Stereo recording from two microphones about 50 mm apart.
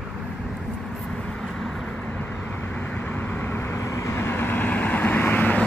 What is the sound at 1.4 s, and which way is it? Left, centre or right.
Vehicle, centre.